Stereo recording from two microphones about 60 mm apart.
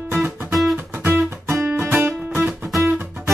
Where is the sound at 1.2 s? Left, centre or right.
Right.